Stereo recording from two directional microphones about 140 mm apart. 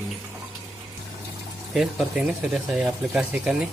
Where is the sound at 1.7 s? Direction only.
5° right (ahead or behind).